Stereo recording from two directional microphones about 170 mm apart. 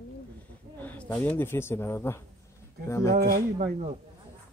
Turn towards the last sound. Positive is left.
turn(degrees=-60)  # may be behind; listen again after turning